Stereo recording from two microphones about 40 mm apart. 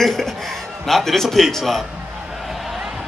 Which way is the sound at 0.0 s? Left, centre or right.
Centre.